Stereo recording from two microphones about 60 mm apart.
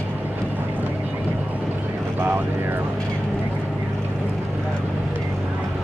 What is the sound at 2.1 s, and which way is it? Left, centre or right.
Vehicle, right.